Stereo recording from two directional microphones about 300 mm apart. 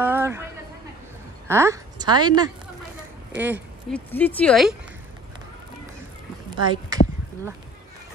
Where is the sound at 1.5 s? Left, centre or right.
Centre.